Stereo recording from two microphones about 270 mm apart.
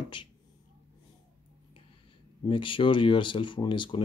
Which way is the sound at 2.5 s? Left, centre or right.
Centre.